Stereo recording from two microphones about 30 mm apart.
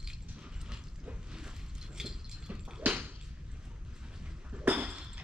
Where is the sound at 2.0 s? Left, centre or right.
Right.